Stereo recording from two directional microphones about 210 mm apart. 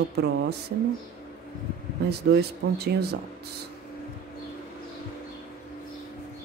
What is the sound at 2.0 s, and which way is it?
Speech, 50° right (ahead or behind).